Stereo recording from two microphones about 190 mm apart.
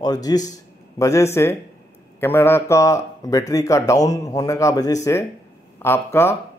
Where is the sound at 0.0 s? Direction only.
20° left (ahead or behind).